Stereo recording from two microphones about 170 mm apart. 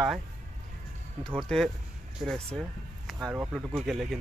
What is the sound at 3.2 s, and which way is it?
Speech, 15° right (ahead or behind).